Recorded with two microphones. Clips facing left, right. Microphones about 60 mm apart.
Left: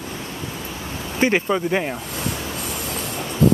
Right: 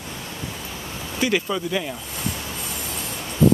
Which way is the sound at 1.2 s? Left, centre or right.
Left.